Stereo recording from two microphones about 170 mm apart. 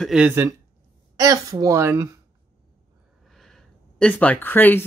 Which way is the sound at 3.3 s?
Centre (ahead or behind).